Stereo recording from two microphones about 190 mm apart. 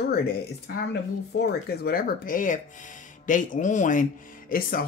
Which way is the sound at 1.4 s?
55° left (ahead or behind).